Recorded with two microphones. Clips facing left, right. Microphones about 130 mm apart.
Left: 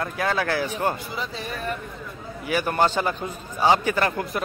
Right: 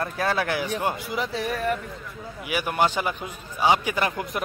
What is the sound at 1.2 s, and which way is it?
Speech, 90° right.